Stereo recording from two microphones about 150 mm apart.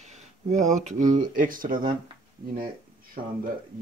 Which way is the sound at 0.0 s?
50° right (ahead or behind).